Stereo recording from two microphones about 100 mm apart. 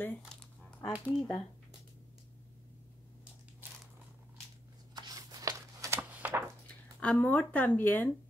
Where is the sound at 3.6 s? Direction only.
20° right (ahead or behind).